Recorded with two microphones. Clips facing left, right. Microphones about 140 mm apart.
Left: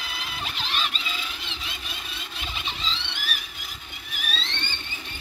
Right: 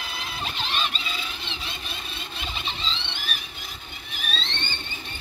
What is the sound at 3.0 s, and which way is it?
Vehicle, 25° right (ahead or behind).